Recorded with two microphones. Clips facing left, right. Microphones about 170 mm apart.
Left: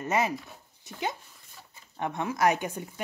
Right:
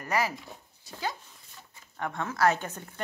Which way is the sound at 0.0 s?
20° left (ahead or behind).